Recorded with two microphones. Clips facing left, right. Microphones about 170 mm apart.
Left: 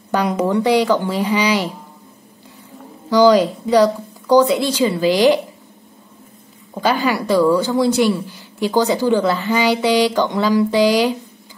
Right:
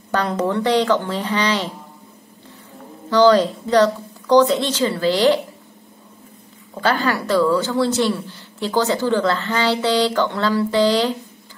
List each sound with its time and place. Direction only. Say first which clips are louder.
0.1 s a woman's voice: left 3 dB; 10° left (ahead or behind)
3.1 s a woman's voice: left 2 dB; 10° left (ahead or behind)
6.7 s a woman's voice: left 2 dB; 15° left (ahead or behind)